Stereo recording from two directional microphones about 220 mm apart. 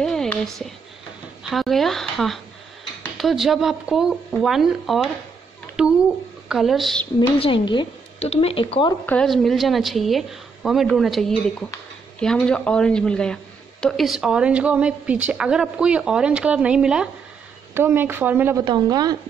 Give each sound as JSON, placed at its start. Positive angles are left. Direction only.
{"t": 0.0, "sound": "a sound", "side_deg": 0}
{"t": 1.4, "sound": "speech", "side_deg": 0}
{"t": 5.8, "sound": "a sound", "side_deg": -5}
{"t": 6.5, "sound": "speech", "side_deg": 0}
{"t": 7.2, "sound": "speech", "side_deg": 25}
{"t": 9.0, "sound": "a woman's voice", "side_deg": 5}